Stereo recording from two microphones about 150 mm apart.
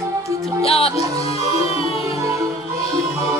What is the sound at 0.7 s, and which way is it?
Music, 40° left (ahead or behind).